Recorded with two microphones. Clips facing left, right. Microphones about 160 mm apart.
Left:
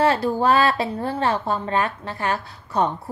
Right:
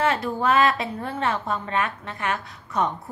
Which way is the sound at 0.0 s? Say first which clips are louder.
Left 4 dB; 35° left (ahead or behind).